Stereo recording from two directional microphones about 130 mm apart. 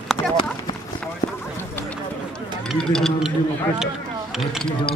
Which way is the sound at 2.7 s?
5° left (ahead or behind).